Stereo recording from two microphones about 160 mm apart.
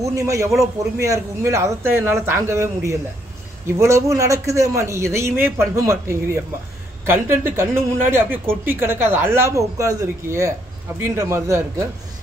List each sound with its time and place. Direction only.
0.0 s a man's voice: 20° right (ahead or behind)
7.5 s speech: 15° right (ahead or behind)